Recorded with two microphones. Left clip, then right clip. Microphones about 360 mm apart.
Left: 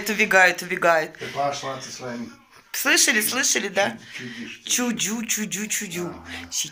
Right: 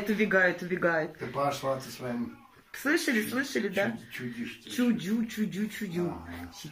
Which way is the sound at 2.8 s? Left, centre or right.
Left.